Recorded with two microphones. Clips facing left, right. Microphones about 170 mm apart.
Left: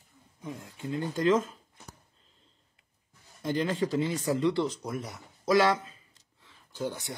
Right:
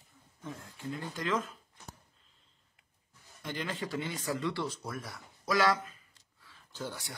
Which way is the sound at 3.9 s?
30° left (ahead or behind).